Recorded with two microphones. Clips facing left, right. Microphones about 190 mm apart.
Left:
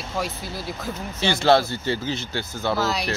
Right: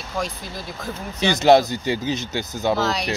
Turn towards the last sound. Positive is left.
turn(degrees=0)  # may be behind; listen again after turning